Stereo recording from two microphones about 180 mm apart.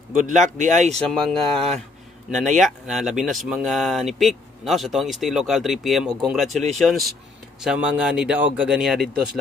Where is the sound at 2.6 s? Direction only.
Centre (ahead or behind).